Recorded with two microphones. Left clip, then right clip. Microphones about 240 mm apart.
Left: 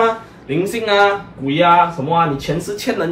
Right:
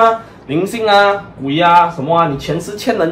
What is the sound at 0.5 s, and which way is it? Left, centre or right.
Speech, centre.